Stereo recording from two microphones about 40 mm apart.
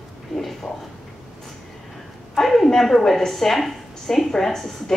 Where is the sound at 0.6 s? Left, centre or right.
Centre.